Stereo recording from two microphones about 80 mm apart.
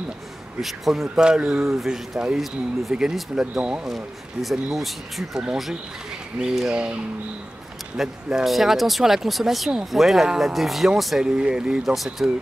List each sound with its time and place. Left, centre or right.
0.6 s speech: centre
8.0 s speech: centre